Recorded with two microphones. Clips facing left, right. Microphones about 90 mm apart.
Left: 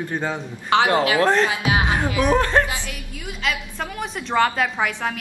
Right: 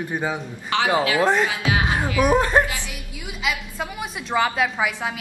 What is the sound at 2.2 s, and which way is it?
A man's voice, 15° right (ahead or behind).